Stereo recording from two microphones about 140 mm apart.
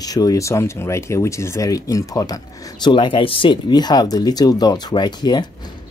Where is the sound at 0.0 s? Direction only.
25° left (ahead or behind).